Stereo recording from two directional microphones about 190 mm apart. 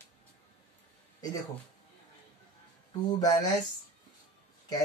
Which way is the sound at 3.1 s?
20° left (ahead or behind).